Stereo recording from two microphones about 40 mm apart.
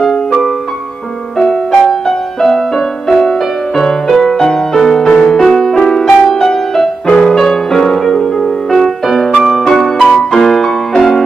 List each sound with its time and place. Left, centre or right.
0.0 s music: centre
8.6 s music: centre